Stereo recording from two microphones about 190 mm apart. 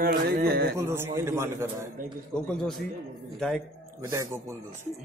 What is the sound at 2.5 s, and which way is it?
A man's voice, centre (ahead or behind).